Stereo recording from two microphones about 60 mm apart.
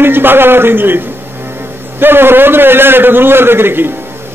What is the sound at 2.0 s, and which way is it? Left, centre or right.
A man's voice, right.